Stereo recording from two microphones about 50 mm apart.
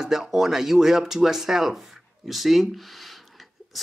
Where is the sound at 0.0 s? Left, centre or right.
Centre.